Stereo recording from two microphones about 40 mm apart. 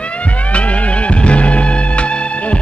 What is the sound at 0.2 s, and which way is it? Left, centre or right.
Music, left.